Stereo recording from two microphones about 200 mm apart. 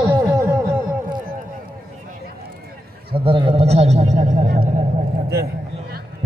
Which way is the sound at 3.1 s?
25° right (ahead or behind).